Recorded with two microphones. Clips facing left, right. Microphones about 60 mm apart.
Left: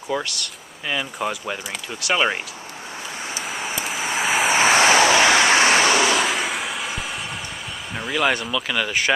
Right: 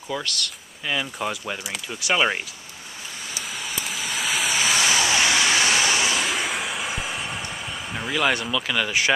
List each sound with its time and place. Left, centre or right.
0.1 s speech: centre
3.3 s vehicle: centre
4.5 s vehicle: left
5.9 s vehicle: left
6.2 s vehicle: centre
7.9 s speech: centre